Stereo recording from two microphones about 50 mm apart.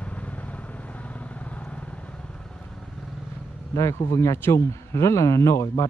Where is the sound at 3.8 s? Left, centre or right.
Left.